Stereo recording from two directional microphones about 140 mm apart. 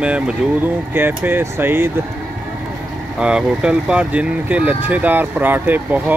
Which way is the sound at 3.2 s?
5° right (ahead or behind).